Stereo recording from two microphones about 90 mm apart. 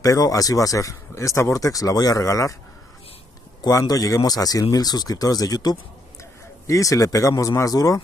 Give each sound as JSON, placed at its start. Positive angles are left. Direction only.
{"t": 0.0, "sound": "speech", "side_deg": 40}
{"t": 3.6, "sound": "speech", "side_deg": 45}